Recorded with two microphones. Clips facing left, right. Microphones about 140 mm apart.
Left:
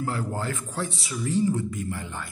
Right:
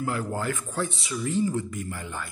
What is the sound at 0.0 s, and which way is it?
Speech, 25° left (ahead or behind).